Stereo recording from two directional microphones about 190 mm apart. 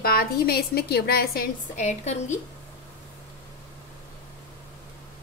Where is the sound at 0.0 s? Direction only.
50° left (ahead or behind).